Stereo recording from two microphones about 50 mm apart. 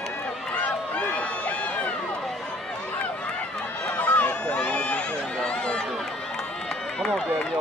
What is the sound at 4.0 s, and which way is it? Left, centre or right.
Run, left.